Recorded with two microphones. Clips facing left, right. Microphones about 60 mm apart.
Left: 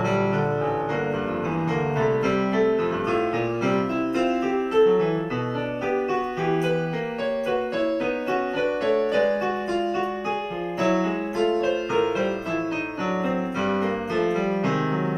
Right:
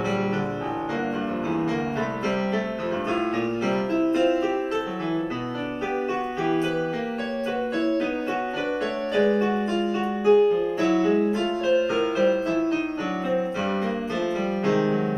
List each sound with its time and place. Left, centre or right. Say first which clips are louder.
2.0 s music: left 4 dB; centre
4.3 s music: even; left
8.8 s music: left 1 dB; centre
10.8 s music: left 1 dB; centre
11.3 s music: left 3 dB; centre
14.1 s music: left 5 dB; centre